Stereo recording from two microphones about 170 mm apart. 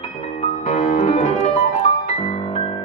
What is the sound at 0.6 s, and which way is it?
Music, 45° left (ahead or behind).